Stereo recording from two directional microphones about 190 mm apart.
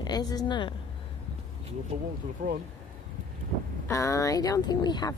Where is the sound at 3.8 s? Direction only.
15° left (ahead or behind).